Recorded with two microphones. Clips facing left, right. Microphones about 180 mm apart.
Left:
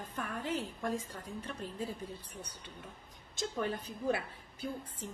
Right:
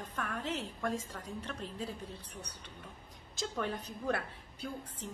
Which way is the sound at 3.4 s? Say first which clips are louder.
Left 1 dB; centre (ahead or behind).